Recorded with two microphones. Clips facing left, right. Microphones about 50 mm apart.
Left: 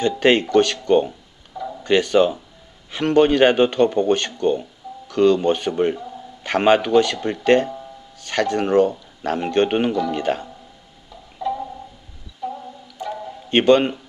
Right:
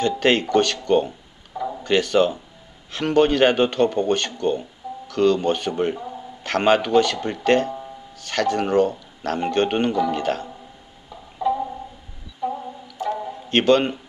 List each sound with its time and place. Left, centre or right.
0.0 s speech: centre
1.5 s a sound: centre
1.8 s speech: centre
5.9 s a sound: centre
6.4 s speech: centre
9.9 s speech: centre
10.2 s speech: centre
11.1 s music: centre
12.4 s a sound: centre
13.5 s speech: centre